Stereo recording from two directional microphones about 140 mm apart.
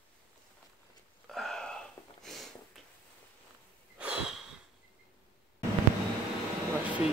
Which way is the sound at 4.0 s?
5° right (ahead or behind).